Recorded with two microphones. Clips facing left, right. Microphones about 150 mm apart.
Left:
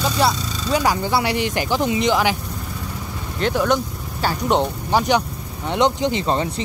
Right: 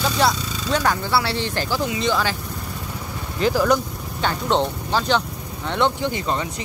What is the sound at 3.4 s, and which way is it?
Speech, centre (ahead or behind).